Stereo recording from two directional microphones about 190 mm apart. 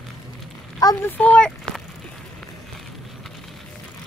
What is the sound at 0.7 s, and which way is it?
Speech, 20° left (ahead or behind).